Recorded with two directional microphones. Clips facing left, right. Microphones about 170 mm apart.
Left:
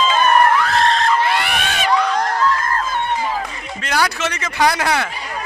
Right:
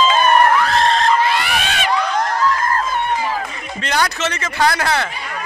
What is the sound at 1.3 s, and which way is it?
Crowd, 60° left (ahead or behind).